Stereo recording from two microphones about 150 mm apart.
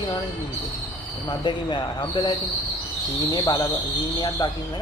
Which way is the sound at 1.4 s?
30° left (ahead or behind).